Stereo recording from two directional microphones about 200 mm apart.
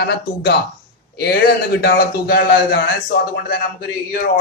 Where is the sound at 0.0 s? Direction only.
55° left (ahead or behind).